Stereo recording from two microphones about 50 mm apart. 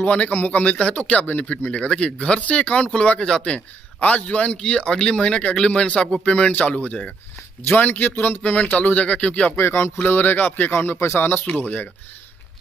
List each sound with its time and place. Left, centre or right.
0.0 s speech: left
3.5 s speech: left
7.7 s speech: left
9.6 s speech: left
11.0 s speech: left
11.4 s speech: left